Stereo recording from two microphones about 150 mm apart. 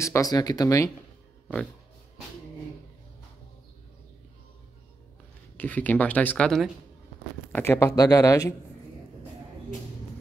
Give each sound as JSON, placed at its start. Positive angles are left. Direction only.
{"t": 0.0, "sound": "speech", "side_deg": 20}
{"t": 5.6, "sound": "speech", "side_deg": 10}
{"t": 7.5, "sound": "speech", "side_deg": 15}